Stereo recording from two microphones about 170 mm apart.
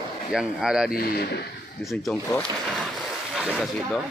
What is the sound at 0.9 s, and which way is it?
Speech, 65° left (ahead or behind).